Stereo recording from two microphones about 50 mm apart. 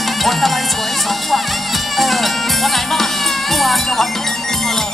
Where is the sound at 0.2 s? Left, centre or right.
Centre.